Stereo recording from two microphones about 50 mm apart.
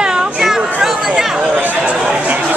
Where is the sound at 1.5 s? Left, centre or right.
Right.